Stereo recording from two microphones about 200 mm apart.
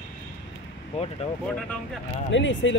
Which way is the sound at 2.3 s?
65° left (ahead or behind).